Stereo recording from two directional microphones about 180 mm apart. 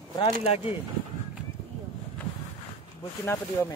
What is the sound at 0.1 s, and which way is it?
Speech, 30° left (ahead or behind).